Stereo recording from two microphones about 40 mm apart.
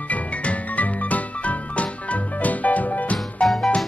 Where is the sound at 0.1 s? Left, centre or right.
Left.